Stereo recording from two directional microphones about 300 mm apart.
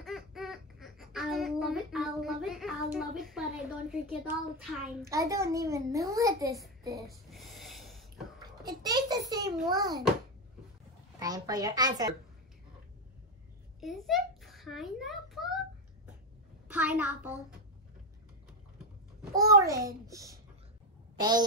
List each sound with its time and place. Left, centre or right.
0.0 s a sound: centre
4.6 s a child's voice: centre
6.8 s a sound: centre
7.1 s snort: centre
8.4 s a child's voice: centre
11.1 s a child's voice: centre
13.7 s a sound: centre
16.6 s a child's voice: centre
19.5 s a child's voice: centre